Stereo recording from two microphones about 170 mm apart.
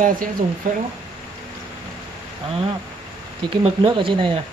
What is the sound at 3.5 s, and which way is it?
Speech, 30° right (ahead or behind).